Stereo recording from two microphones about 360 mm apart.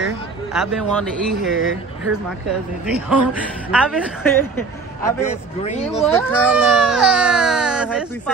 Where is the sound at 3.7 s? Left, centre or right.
Centre.